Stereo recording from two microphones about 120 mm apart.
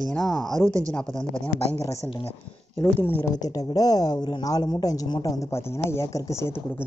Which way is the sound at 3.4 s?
30° left (ahead or behind).